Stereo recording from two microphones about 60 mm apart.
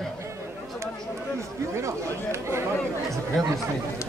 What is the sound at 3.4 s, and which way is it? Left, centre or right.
Chatter, centre.